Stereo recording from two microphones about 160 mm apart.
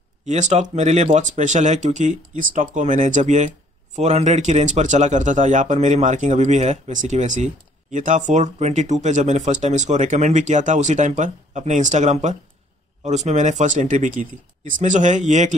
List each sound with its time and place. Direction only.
0.3 s speech: 45° right (ahead or behind)